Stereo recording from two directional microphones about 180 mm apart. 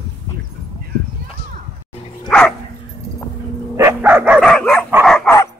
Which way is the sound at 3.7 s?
15° right (ahead or behind).